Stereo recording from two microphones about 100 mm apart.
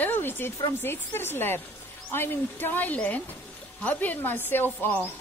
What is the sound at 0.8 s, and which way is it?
A woman's voice, 25° left (ahead or behind).